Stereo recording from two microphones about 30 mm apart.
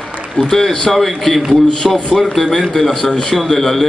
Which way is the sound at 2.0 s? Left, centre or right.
Centre.